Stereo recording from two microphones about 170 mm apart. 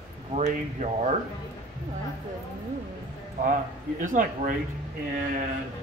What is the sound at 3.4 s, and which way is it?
Speech, 50° right (ahead or behind).